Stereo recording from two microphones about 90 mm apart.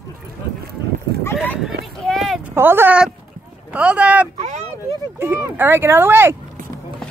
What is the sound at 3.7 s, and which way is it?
Speech, 15° right (ahead or behind).